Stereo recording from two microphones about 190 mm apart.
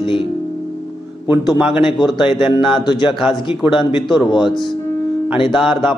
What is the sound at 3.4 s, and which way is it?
Speech, 25° left (ahead or behind).